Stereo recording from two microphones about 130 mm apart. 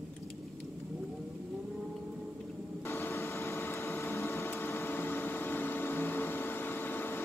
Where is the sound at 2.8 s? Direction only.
20° left (ahead or behind).